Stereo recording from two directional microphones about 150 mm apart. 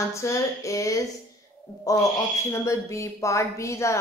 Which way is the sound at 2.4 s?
20° left (ahead or behind).